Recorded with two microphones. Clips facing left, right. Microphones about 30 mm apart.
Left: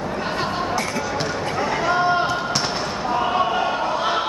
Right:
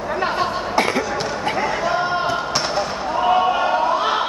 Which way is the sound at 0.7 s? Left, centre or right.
Right.